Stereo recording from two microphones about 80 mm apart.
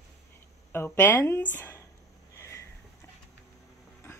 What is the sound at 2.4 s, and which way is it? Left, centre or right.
Sniff, left.